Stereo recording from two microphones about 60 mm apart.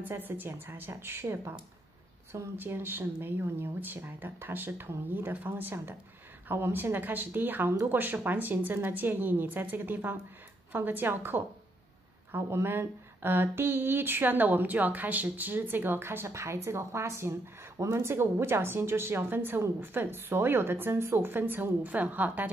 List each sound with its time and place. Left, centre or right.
0.1 s speech: right
2.5 s speech: right